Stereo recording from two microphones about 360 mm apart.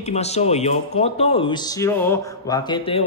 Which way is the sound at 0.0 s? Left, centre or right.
Centre.